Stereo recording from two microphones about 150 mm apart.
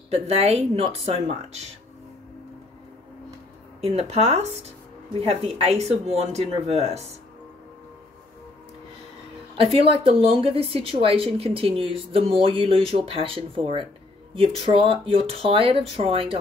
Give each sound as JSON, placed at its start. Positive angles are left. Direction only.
{"t": 0.1, "sound": "speech", "side_deg": -45}
{"t": 3.8, "sound": "speech", "side_deg": -40}
{"t": 9.6, "sound": "a woman's voice", "side_deg": -40}